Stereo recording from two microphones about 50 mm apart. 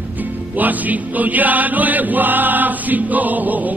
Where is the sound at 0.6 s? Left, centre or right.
Right.